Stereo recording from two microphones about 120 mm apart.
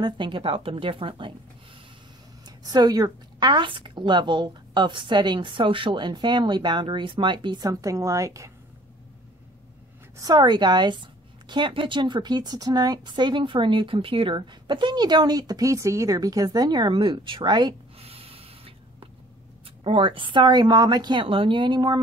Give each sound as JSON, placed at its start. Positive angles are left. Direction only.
{"t": 0.0, "sound": "a woman's voice", "side_deg": -45}
{"t": 2.4, "sound": "a woman's voice", "side_deg": -35}
{"t": 10.1, "sound": "a woman's voice", "side_deg": -30}
{"t": 17.9, "sound": "snort", "side_deg": -55}
{"t": 19.8, "sound": "a woman's voice", "side_deg": -50}